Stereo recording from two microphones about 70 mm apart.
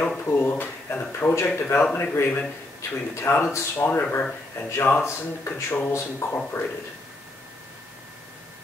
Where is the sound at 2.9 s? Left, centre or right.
Left.